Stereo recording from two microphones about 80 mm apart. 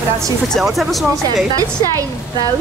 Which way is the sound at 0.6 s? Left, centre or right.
Centre.